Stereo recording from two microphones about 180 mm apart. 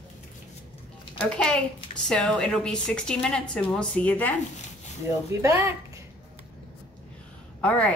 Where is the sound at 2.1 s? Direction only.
5° left (ahead or behind).